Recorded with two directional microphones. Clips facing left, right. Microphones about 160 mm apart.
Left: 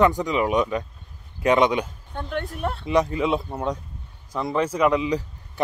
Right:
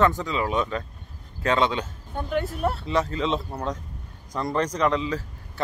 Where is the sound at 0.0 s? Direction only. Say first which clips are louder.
Left 3 dB; 15° left (ahead or behind).